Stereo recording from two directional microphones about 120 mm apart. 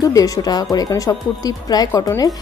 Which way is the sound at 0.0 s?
30° left (ahead or behind).